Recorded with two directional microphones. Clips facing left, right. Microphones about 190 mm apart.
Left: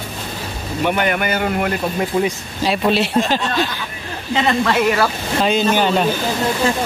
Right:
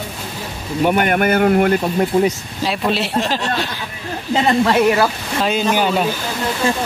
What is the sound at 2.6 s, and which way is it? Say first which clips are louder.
Speech: left 2 dB; centre (ahead or behind).